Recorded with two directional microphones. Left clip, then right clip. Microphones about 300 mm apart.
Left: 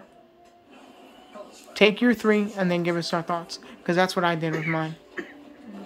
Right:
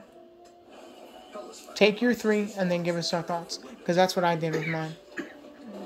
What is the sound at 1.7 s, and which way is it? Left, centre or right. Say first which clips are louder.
Speech: left 3 dB; centre.